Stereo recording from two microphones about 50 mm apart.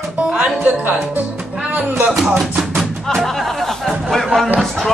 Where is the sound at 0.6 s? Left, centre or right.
Right.